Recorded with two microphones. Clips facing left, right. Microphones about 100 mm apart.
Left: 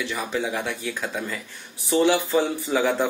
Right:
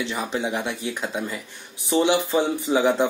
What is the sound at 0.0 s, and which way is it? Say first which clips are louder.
Speech: right 1 dB; 20° right (ahead or behind).